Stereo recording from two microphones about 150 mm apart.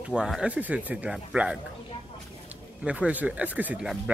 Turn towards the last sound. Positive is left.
turn(degrees=-5)  # may be behind; listen again after turning